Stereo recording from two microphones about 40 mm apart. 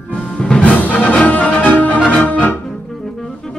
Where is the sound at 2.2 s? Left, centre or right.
Left.